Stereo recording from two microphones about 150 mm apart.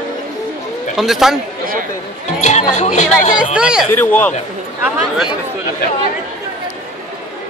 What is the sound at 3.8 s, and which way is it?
Speech, 15° left (ahead or behind).